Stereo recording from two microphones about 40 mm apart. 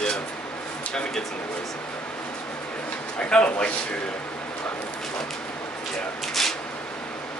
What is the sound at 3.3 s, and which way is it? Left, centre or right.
Speech, left.